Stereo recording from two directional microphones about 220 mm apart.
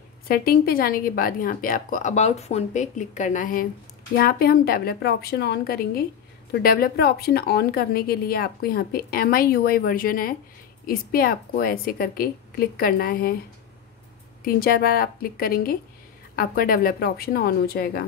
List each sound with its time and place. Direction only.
0.3 s a woman's voice: 45° left (ahead or behind)
14.4 s a woman's voice: 45° left (ahead or behind)